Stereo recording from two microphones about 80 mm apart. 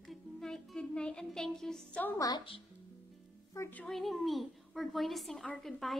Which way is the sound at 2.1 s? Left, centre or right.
Left.